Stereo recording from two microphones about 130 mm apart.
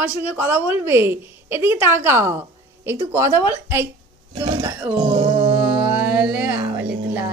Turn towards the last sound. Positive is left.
turn(degrees=-15)  # may be behind; listen again after turning